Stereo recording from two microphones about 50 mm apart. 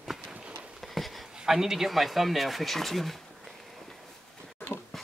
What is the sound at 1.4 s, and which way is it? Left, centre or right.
Speech, centre.